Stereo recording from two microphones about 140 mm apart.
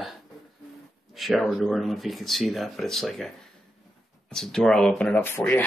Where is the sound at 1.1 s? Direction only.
Centre (ahead or behind).